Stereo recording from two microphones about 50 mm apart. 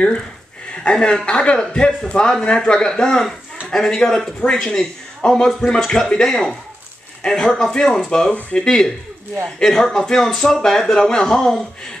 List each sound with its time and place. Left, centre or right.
0.8 s a man's voice: centre